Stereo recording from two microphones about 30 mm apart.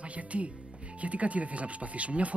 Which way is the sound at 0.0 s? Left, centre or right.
Right.